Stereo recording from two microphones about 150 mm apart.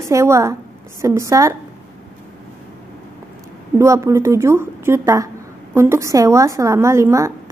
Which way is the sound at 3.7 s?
20° right (ahead or behind).